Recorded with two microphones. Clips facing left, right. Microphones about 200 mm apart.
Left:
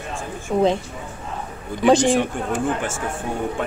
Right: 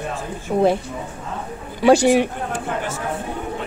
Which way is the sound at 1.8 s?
10° right (ahead or behind).